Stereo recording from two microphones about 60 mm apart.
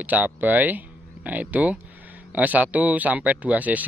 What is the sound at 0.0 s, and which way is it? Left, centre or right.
Speech, right.